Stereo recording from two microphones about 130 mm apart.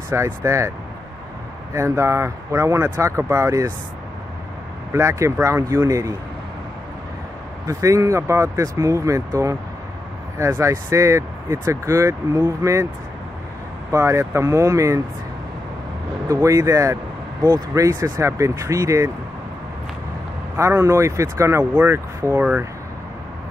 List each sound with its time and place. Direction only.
0.1 s speech: 20° right (ahead or behind)
1.7 s speech: 20° right (ahead or behind)
4.9 s speech: 20° right (ahead or behind)
7.6 s speech: 25° right (ahead or behind)
13.9 s speech: 20° right (ahead or behind)
16.3 s speech: 25° right (ahead or behind)
20.5 s speech: 20° right (ahead or behind)